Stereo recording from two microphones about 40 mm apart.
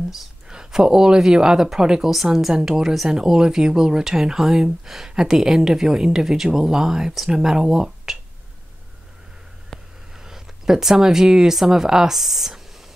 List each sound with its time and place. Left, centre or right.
0.5 s speech: centre
2.0 s a woman's voice: centre
9.7 s a sound: centre
10.1 s speech: centre